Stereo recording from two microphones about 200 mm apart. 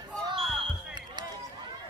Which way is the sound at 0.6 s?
20° right (ahead or behind).